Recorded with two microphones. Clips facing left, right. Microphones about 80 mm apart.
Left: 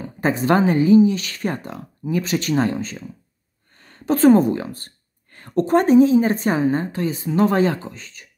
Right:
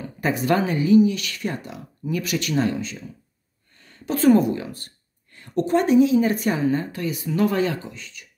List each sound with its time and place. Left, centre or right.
0.0 s speech: left
2.0 s speech: left